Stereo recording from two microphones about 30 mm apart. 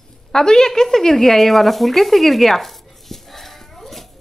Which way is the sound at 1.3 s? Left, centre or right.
Centre.